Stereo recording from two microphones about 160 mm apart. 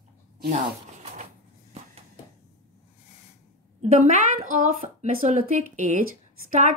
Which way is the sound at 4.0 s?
45° right (ahead or behind).